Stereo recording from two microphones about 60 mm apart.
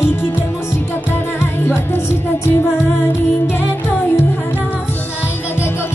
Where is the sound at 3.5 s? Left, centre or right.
Left.